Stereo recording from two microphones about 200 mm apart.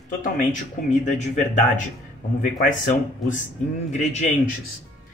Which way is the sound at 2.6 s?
40° left (ahead or behind).